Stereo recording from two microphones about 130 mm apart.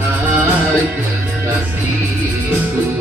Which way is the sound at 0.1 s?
10° right (ahead or behind).